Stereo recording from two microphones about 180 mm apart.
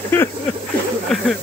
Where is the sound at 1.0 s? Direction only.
Centre (ahead or behind).